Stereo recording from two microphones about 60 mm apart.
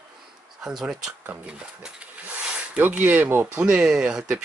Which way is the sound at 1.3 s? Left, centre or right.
Centre.